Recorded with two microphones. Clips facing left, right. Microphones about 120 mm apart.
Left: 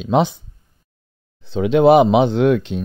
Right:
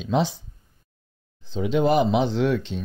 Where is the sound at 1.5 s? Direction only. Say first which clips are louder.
Left 9 dB; 70° left (ahead or behind).